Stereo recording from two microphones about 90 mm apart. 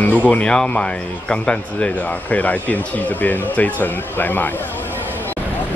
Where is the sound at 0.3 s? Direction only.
10° left (ahead or behind).